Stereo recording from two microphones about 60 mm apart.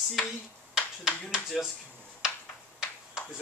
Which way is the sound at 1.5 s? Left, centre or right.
Centre.